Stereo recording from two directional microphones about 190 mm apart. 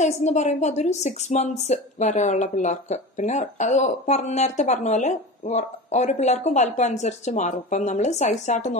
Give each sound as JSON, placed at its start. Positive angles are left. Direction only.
{"t": 0.0, "sound": "speech", "side_deg": 35}